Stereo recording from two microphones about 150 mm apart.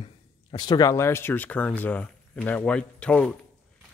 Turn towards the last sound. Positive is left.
turn(degrees=10)  # may be behind; listen again after turning